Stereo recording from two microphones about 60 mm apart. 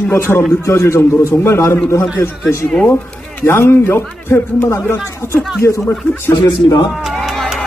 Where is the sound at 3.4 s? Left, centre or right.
Left.